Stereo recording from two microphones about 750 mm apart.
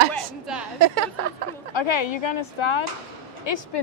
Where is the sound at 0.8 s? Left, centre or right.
Right.